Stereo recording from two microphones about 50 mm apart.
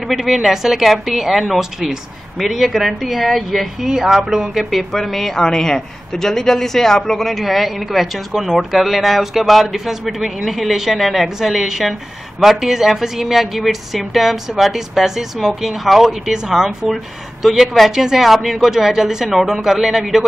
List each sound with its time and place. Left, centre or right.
0.1 s speech: centre
4.6 s a woman's voice: centre